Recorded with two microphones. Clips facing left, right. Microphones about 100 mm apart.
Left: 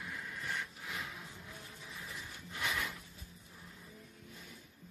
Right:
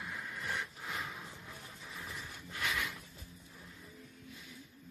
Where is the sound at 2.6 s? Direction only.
30° left (ahead or behind).